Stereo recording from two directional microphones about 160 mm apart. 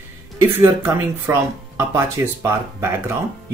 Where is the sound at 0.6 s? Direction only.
15° right (ahead or behind).